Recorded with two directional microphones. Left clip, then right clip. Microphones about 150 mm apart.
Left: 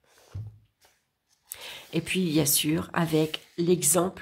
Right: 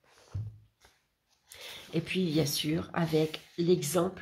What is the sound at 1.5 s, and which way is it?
A woman's voice, 35° left (ahead or behind).